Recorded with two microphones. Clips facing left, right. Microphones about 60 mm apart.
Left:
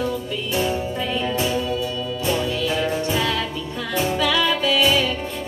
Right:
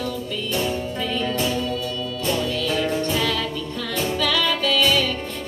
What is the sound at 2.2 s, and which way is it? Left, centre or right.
Music, centre.